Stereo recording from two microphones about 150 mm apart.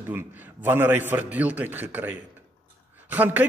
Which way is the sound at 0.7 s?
15° right (ahead or behind).